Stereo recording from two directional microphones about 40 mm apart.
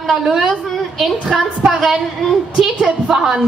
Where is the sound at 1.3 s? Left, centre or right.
Centre.